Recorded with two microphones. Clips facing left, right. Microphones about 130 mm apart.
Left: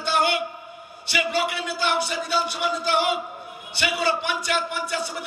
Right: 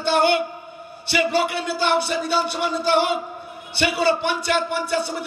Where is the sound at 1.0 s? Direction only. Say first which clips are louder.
Right 4 dB; 30° right (ahead or behind).